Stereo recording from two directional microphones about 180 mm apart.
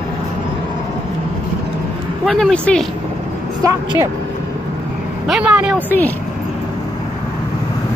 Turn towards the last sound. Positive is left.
turn(degrees=10)  # may be behind; listen again after turning